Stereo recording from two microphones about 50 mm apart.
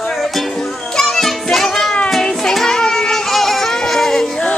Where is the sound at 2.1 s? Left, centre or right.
Centre.